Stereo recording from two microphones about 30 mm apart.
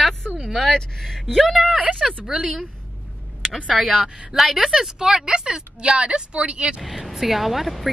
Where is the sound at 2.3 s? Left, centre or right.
Right.